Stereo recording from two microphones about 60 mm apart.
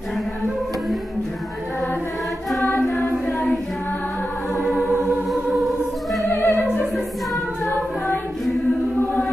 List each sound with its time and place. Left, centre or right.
3.3 s singing: centre
4.6 s choir: centre
5.3 s music: centre
6.3 s music: left